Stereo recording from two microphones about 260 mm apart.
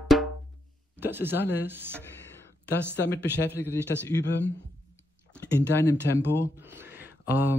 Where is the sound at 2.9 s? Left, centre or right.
Left.